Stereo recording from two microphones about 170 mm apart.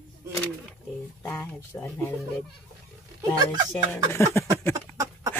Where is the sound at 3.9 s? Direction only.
15° left (ahead or behind).